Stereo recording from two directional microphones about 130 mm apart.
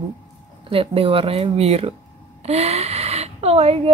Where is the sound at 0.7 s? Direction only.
45° right (ahead or behind).